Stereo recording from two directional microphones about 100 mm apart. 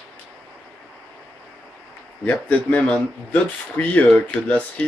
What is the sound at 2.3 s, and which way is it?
Speech, 15° left (ahead or behind).